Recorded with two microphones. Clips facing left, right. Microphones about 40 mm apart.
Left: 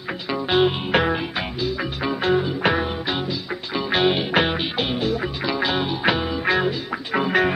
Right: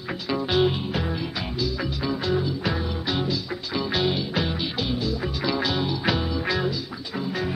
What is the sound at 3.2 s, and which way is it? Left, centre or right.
Music, left.